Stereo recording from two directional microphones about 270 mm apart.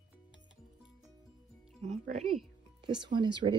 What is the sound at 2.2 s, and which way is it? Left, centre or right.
Speech, centre.